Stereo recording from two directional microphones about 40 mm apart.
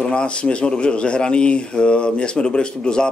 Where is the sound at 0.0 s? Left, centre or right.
Left.